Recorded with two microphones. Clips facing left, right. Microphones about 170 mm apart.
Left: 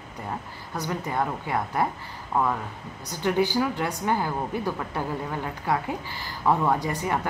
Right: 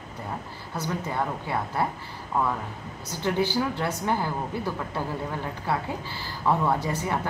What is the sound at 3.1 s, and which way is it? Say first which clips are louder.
A woman's voice: left 2 dB; 15° left (ahead or behind).